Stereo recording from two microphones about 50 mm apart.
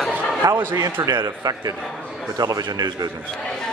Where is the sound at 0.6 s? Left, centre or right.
Right.